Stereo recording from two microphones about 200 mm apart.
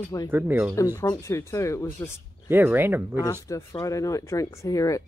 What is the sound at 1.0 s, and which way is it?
Speech, 15° left (ahead or behind).